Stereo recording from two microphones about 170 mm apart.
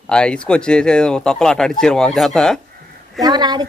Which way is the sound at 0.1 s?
5° left (ahead or behind).